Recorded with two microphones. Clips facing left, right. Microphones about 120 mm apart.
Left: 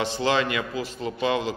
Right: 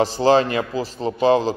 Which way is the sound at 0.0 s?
35° right (ahead or behind).